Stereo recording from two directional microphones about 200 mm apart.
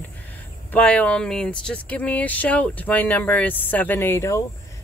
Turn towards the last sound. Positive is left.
turn(degrees=15)  # may be behind; listen again after turning